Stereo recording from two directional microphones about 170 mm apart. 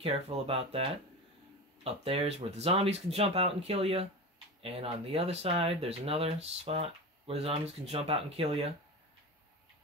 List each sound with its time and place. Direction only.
0.0 s speech: 35° right (ahead or behind)